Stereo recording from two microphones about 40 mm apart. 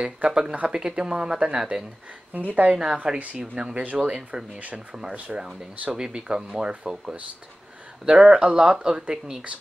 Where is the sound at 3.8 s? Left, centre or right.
Right.